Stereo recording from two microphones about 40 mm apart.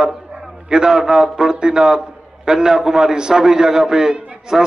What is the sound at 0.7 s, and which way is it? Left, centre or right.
A man's voice, centre.